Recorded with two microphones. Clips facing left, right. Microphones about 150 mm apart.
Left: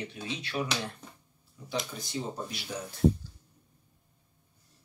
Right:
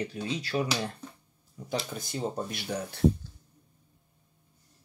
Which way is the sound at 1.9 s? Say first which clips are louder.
Right 3 dB; 55° right (ahead or behind).